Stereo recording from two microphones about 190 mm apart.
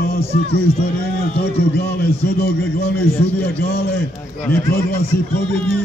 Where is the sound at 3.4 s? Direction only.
55° left (ahead or behind).